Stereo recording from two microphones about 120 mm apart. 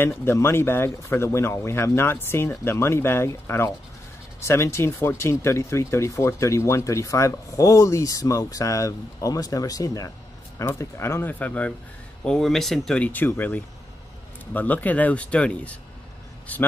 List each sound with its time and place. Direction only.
0.2 s speech: 20° left (ahead or behind)